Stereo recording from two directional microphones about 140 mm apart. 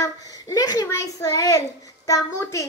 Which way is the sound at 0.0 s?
25° left (ahead or behind).